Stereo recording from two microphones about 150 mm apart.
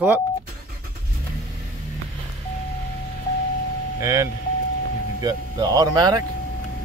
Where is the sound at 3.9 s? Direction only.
20° right (ahead or behind).